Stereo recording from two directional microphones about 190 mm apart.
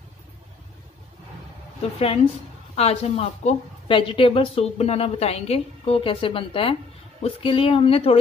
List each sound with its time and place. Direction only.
1.8 s a woman's voice: 35° left (ahead or behind)